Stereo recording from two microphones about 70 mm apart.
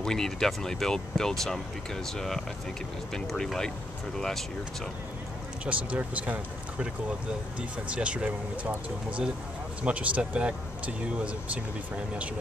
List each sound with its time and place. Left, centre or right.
0.0 s speech: centre
5.7 s speech: right